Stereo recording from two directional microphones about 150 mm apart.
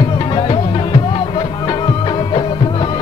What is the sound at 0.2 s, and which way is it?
Music, 35° left (ahead or behind).